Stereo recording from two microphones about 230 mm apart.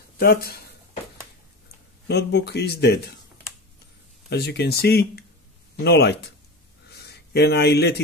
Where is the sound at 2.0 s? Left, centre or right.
Left.